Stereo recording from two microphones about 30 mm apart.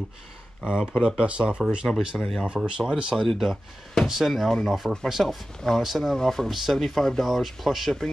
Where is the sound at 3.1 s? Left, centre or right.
Left.